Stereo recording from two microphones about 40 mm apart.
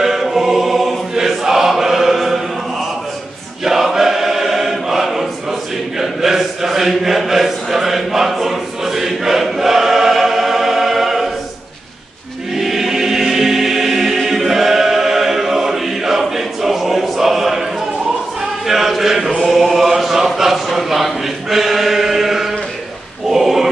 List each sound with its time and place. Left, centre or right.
0.0 s choir: centre
12.5 s choir: centre
18.7 s chant: centre
19.4 s a sound: centre